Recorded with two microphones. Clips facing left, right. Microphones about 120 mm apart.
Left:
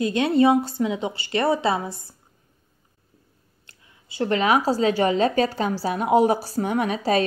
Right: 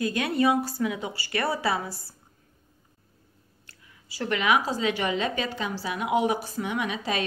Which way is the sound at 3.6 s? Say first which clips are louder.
Even; 25° left (ahead or behind).